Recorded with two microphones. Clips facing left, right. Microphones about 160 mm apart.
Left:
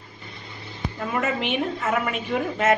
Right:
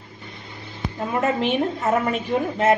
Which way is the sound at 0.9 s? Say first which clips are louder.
Right 4 dB; 35° right (ahead or behind).